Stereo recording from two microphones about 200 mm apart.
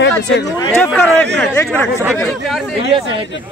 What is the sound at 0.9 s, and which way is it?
A man's voice, 5° left (ahead or behind).